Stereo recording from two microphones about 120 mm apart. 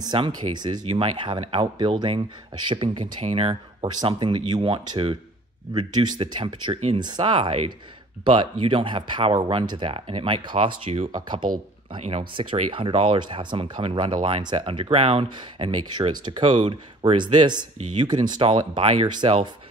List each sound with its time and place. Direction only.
0.0 s speech: 40° right (ahead or behind)
0.8 s speech: 50° right (ahead or behind)
3.8 s speech: 40° right (ahead or behind)
10.9 s speech: 70° right (ahead or behind)
11.1 s speech: 35° right (ahead or behind)